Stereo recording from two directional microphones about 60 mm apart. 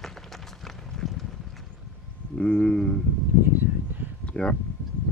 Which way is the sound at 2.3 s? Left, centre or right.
Centre.